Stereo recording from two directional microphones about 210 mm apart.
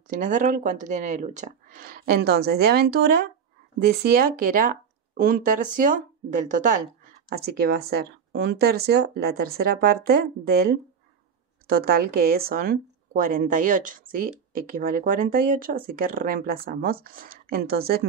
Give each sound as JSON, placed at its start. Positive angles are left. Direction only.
{"t": 0.1, "sound": "speech", "side_deg": -35}
{"t": 7.3, "sound": "speech", "side_deg": -50}